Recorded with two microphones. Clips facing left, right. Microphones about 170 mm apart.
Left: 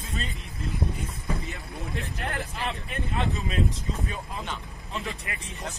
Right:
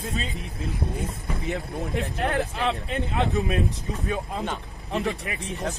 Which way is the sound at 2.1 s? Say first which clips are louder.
Right 7 dB; 65° right (ahead or behind).